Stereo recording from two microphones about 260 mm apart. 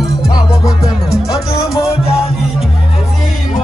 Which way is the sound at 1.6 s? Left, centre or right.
Left.